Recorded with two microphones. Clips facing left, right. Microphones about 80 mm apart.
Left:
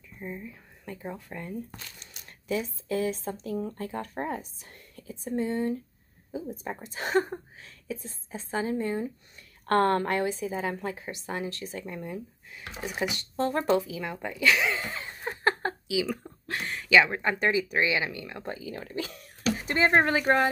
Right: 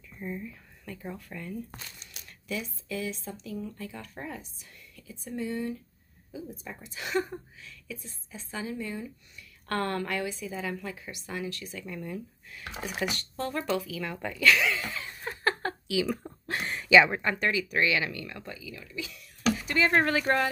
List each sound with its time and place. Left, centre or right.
0.2 s a woman's voice: centre
13.4 s a sound: left
15.9 s speech: centre
16.3 s a sound: right
16.9 s speech: centre
17.2 s speech: centre
17.5 s speech: left
18.4 s speech: left; by 20.4 s centre